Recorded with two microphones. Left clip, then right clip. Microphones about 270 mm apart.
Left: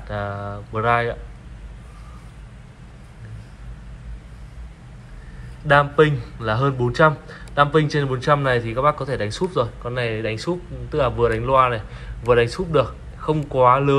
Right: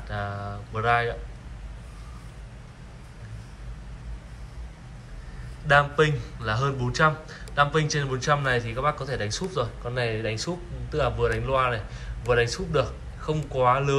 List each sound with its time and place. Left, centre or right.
0.1 s a man's voice: centre
5.7 s a man's voice: centre